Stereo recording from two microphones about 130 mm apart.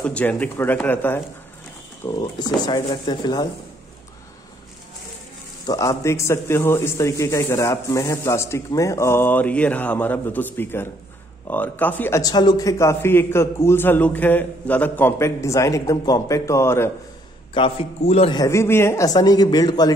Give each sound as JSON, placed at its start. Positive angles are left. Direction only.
{"t": 0.0, "sound": "speech", "side_deg": 10}
{"t": 2.0, "sound": "speech", "side_deg": 35}
{"t": 5.7, "sound": "a man's voice", "side_deg": 25}
{"t": 12.2, "sound": "a man's voice", "side_deg": 30}
{"t": 17.6, "sound": "a man's voice", "side_deg": 45}
{"t": 18.3, "sound": "a man's voice", "side_deg": 25}